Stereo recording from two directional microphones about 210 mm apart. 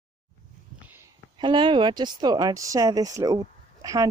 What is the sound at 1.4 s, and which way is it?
Speech, 20° right (ahead or behind).